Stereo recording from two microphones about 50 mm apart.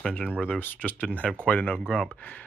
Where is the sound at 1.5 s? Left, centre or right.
Left.